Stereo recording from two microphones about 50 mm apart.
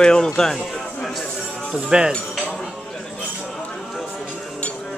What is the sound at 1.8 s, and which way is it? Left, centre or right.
Speech, centre.